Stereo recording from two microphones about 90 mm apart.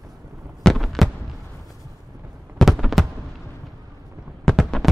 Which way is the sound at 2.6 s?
Centre (ahead or behind).